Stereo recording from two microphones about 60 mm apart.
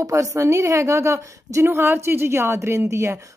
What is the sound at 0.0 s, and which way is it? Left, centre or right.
A woman's voice, right.